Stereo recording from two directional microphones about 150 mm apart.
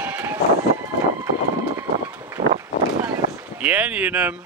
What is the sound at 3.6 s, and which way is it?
Speech, 10° right (ahead or behind).